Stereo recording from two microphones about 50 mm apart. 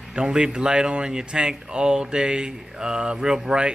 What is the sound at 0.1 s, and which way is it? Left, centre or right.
A man's voice, centre.